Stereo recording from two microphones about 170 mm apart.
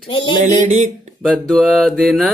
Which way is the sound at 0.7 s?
40° right (ahead or behind).